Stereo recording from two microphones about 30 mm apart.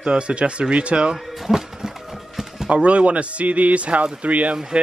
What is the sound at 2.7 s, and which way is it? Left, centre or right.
Speech, right.